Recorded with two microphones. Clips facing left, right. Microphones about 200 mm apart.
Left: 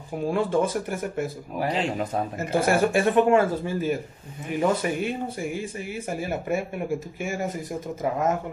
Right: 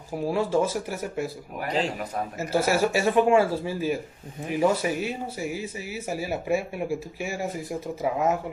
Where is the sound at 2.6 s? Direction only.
50° left (ahead or behind).